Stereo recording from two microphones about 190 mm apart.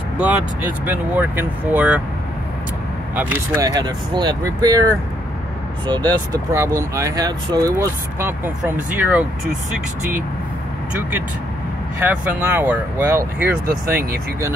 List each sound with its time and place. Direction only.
0.2 s speech: 10° right (ahead or behind)
3.2 s speech: 15° right (ahead or behind)
5.9 s speech: 20° right (ahead or behind)
12.0 s speech: 10° right (ahead or behind)